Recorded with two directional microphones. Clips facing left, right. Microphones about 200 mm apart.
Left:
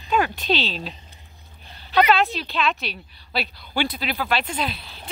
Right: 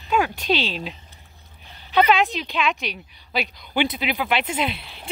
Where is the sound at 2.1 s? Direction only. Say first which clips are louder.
Even; 15° right (ahead or behind).